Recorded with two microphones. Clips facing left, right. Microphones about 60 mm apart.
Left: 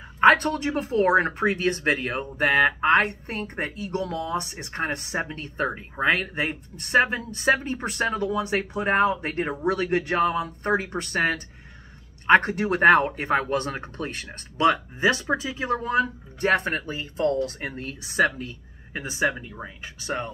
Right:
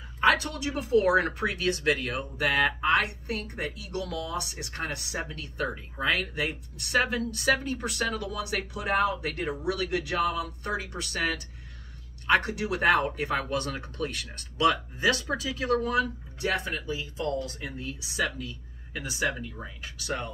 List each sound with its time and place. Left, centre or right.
0.2 s speech: left